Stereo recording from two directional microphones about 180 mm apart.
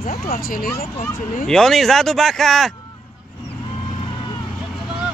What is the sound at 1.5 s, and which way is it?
Speech, 5° left (ahead or behind).